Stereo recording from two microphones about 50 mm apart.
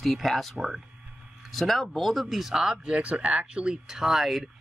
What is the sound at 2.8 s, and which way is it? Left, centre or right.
Speech, right.